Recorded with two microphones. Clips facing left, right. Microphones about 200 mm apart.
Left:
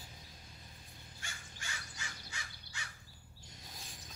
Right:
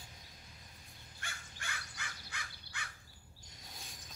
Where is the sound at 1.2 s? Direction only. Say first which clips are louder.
Right 2 dB; 55° right (ahead or behind).